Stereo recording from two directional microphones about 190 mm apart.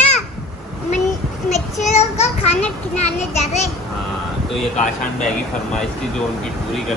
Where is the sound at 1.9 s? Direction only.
35° left (ahead or behind).